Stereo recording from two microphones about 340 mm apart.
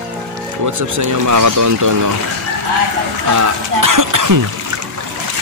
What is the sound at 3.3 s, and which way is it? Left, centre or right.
Speech, right.